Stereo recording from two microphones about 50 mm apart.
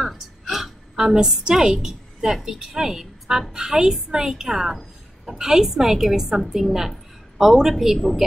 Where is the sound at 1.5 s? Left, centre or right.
Centre.